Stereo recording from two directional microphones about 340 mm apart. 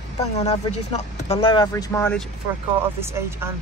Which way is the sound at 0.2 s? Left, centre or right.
Centre.